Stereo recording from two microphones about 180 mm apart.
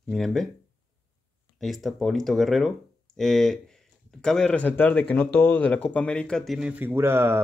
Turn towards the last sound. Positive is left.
turn(degrees=-15)  # may be behind; listen again after turning